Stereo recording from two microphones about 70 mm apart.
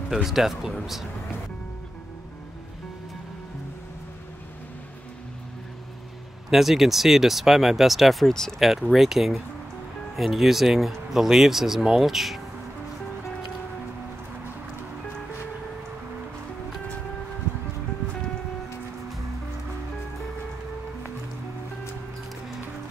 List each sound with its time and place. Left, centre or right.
0.1 s speech: centre
6.5 s speech: centre